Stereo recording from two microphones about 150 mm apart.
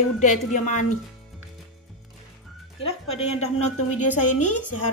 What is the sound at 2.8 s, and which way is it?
A woman's voice, 40° left (ahead or behind).